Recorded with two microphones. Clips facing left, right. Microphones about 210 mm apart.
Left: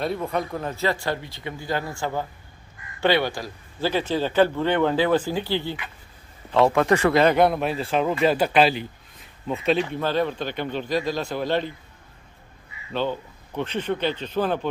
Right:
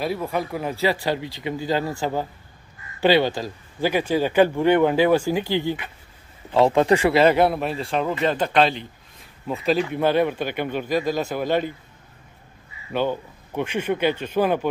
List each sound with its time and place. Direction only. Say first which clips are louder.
0.0 s a man's voice: right 1 dB; 5° right (ahead or behind)
9.9 s a man's voice: right 4 dB; 15° right (ahead or behind)
12.9 s a man's voice: right 3 dB; 15° right (ahead or behind)